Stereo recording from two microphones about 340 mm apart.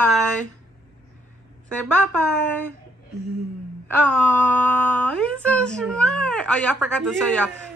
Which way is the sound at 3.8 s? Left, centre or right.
Centre.